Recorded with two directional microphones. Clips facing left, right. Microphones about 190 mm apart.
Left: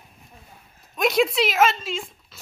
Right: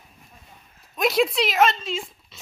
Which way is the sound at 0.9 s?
Centre (ahead or behind).